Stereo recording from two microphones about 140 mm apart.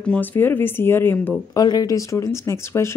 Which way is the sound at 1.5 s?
30° left (ahead or behind).